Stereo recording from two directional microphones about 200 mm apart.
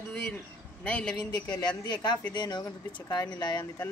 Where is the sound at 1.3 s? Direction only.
20° left (ahead or behind).